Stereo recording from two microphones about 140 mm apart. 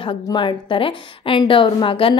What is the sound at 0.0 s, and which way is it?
A woman's voice, 35° left (ahead or behind).